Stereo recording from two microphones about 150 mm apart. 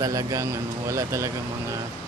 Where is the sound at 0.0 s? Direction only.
20° right (ahead or behind).